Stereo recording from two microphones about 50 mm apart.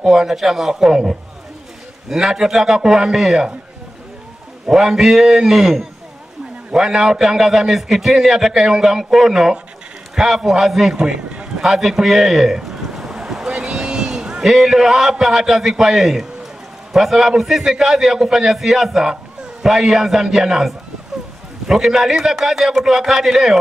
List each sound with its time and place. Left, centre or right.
0.0 s a man's voice: centre
4.6 s a man's voice: centre
11.0 s speech: centre
11.6 s a man's voice: centre